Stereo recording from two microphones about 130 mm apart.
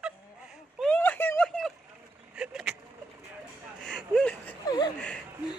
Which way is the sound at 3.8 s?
5° left (ahead or behind).